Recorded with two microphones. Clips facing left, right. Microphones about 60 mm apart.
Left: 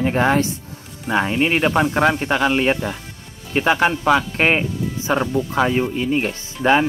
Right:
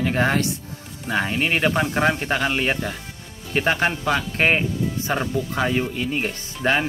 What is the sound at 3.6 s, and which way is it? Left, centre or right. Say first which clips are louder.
Speech: left 5 dB; left.